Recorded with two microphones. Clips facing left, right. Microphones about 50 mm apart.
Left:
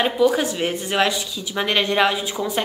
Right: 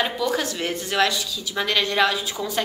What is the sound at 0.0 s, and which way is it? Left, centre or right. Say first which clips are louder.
A woman's voice: left 5 dB; centre.